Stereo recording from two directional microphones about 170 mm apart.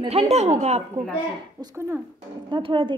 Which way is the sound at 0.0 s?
35° right (ahead or behind).